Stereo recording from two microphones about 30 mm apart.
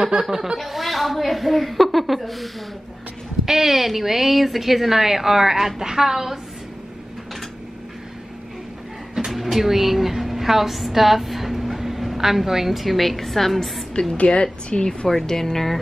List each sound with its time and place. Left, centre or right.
0.0 s a woman's voice: centre
0.7 s a woman's voice: centre
3.4 s a woman's voice: centre
9.3 s a woman's voice: centre
14.1 s a woman's voice: left
15.0 s speech: centre